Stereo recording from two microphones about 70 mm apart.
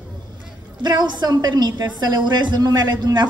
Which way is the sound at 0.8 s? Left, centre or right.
Right.